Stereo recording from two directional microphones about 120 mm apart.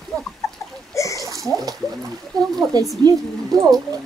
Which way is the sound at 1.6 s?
30° right (ahead or behind).